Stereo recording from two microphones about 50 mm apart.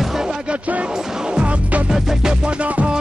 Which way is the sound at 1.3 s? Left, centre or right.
Right.